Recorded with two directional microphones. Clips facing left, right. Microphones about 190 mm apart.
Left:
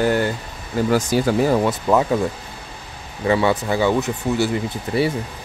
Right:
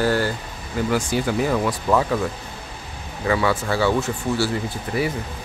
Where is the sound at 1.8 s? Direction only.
20° left (ahead or behind).